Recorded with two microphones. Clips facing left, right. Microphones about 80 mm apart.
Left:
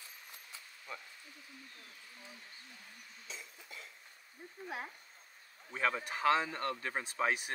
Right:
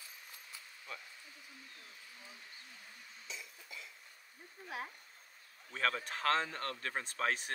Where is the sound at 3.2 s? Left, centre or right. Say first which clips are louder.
Even; left.